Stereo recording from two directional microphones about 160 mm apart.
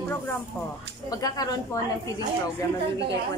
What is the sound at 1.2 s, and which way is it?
Speech, 25° left (ahead or behind).